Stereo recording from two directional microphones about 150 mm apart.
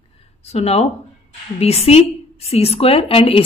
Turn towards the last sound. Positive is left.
turn(degrees=40)  # may be behind; listen again after turning